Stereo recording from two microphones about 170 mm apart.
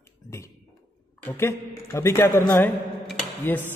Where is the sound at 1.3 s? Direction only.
15° left (ahead or behind).